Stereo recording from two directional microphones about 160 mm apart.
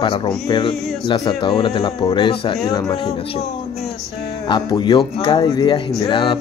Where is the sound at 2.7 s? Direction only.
25° left (ahead or behind).